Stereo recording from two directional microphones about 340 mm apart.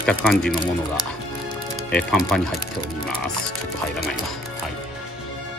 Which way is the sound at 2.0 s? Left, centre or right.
Centre.